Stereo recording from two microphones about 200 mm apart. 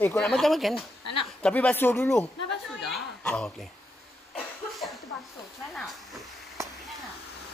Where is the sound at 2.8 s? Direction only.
5° left (ahead or behind).